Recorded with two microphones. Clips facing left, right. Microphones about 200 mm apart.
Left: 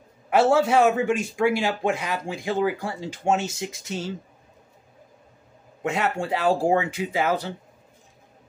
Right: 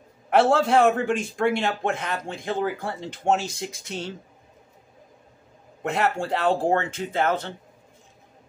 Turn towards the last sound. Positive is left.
turn(degrees=10)  # may be behind; listen again after turning